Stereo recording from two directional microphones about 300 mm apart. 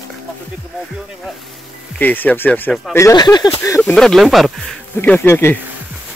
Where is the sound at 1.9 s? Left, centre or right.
Centre.